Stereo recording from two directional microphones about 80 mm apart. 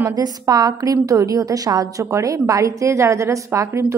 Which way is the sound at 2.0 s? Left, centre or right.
Right.